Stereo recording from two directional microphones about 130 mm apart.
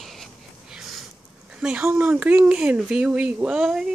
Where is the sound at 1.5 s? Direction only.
5° right (ahead or behind).